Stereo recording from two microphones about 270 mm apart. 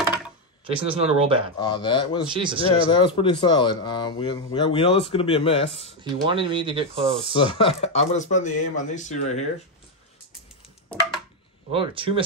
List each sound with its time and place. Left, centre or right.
0.7 s speech: centre
1.6 s speech: centre
2.3 s speech: centre
2.9 s speech: centre
6.0 s speech: centre
7.5 s speech: left
11.7 s speech: centre